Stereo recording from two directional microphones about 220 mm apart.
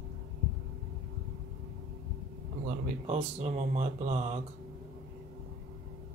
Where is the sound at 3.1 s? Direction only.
30° right (ahead or behind).